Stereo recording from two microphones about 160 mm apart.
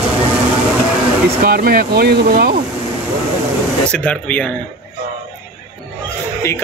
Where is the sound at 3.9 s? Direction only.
5° left (ahead or behind).